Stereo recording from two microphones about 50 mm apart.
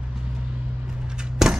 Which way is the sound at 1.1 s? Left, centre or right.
Centre.